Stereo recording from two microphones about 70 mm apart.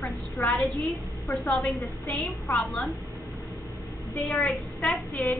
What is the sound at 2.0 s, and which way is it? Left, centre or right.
Speech, left.